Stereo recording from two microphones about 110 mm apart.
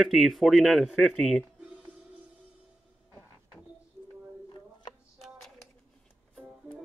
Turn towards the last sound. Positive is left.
turn(degrees=40)  # may be behind; listen again after turning